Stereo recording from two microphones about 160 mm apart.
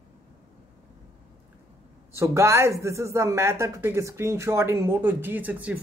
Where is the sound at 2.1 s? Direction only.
15° right (ahead or behind).